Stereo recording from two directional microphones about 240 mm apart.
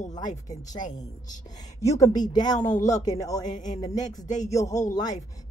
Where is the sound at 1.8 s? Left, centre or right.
Centre.